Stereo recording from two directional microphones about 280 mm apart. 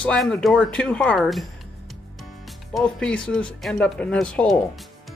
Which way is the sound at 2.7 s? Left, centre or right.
Centre.